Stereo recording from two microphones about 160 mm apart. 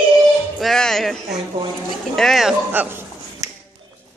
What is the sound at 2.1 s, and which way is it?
Speech, centre (ahead or behind).